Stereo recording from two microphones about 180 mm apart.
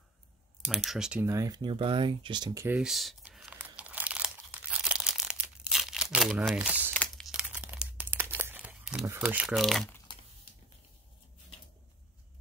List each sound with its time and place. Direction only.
0.7 s speech: centre (ahead or behind)
1.2 s speech: 20° right (ahead or behind)
2.6 s crumpling: 5° right (ahead or behind)
6.9 s crumpling: 10° left (ahead or behind)
7.2 s crumpling: 5° right (ahead or behind)
9.0 s speech: 10° right (ahead or behind)